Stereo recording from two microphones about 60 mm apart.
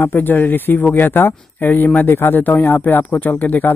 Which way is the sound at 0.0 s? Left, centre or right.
Left.